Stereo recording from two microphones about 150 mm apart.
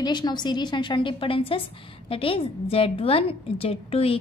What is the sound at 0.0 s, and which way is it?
A woman's voice, 30° left (ahead or behind).